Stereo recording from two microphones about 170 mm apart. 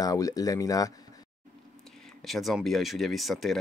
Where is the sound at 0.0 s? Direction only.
20° left (ahead or behind).